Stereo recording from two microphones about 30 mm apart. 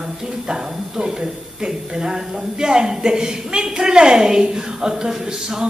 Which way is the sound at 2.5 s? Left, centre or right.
Right.